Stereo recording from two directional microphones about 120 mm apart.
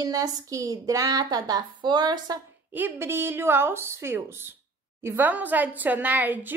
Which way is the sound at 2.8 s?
15° right (ahead or behind).